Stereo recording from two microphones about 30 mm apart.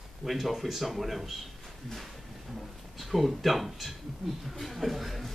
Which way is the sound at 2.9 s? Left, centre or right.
Centre.